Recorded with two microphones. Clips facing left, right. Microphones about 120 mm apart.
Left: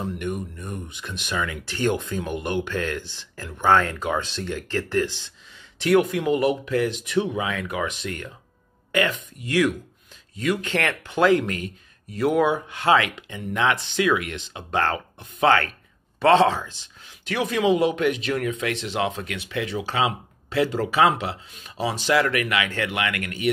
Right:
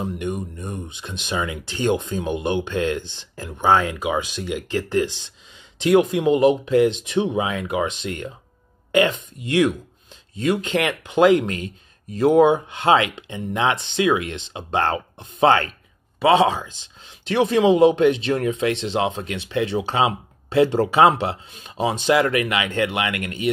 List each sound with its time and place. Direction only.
0.0 s speech: 20° right (ahead or behind)
16.2 s speech: 10° right (ahead or behind)